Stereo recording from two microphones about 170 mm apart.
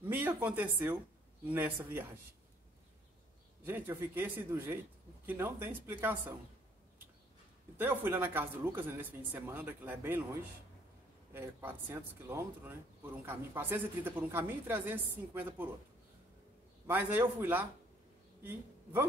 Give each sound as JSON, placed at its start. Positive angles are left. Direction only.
{"t": 0.0, "sound": "speech", "side_deg": -10}
{"t": 3.6, "sound": "speech", "side_deg": -10}
{"t": 7.7, "sound": "speech", "side_deg": -10}
{"t": 11.3, "sound": "speech", "side_deg": -15}
{"t": 16.8, "sound": "speech", "side_deg": -10}